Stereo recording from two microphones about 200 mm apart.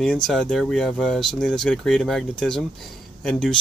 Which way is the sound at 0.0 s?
5° left (ahead or behind).